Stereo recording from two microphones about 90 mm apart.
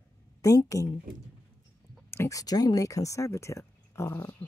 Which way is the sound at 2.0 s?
25° left (ahead or behind).